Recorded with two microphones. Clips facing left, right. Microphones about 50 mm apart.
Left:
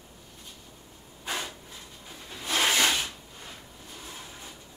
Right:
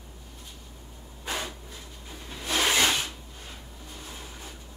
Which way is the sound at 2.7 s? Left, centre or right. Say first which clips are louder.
Right 1 dB; centre.